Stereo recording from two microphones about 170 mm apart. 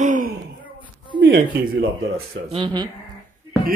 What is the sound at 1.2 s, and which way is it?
Speech, 70° right (ahead or behind).